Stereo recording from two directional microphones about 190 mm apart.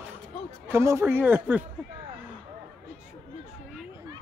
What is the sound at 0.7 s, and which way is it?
Speech, 15° right (ahead or behind).